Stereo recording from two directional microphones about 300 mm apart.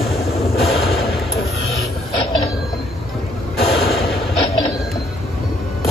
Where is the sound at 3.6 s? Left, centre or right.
Centre.